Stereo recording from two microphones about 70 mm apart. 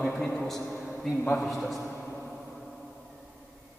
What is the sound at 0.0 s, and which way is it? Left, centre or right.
A man's voice, centre.